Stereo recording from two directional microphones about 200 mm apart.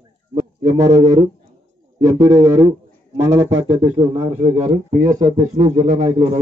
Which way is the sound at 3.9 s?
25° right (ahead or behind).